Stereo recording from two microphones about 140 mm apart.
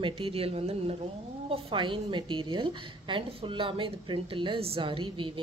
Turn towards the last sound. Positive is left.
turn(degrees=-35)  # may be behind; listen again after turning